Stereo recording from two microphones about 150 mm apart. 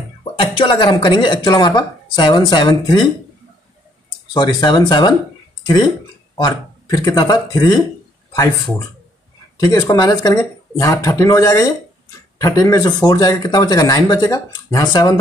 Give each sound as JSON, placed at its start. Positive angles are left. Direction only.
{"t": 0.2, "sound": "speech", "side_deg": 35}
{"t": 4.3, "sound": "speech", "side_deg": 30}
{"t": 6.3, "sound": "speech", "side_deg": 25}
{"t": 9.6, "sound": "speech", "side_deg": 25}